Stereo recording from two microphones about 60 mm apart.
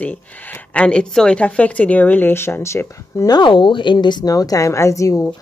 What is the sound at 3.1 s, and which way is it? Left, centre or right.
Speech, left.